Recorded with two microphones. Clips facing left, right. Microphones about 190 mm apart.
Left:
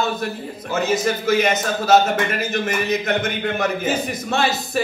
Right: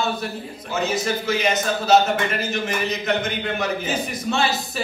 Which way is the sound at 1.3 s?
50° left (ahead or behind).